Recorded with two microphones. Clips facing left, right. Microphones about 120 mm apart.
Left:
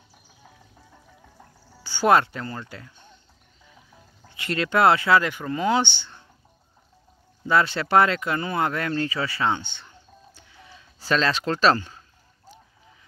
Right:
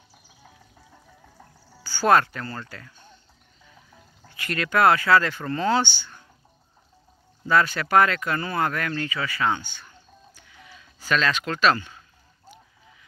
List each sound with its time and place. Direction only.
1.8 s speech: 20° left (ahead or behind)
4.3 s speech: 25° left (ahead or behind)
7.4 s speech: 25° left (ahead or behind)